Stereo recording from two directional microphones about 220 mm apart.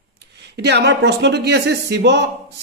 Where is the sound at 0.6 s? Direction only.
50° right (ahead or behind).